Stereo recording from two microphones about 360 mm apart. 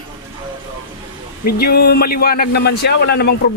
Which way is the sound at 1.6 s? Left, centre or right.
Left.